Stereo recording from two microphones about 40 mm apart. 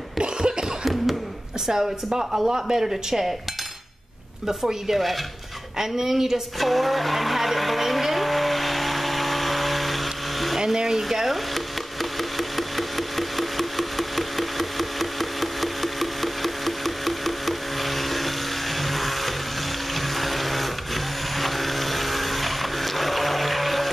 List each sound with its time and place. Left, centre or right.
0.2 s cough: right
1.7 s speech: centre
4.5 s speech: centre
6.6 s vehicle: centre
10.6 s speech: centre
11.5 s a sound: centre
19.9 s blender: centre